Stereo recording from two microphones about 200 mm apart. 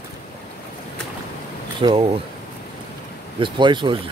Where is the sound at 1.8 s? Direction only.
30° right (ahead or behind).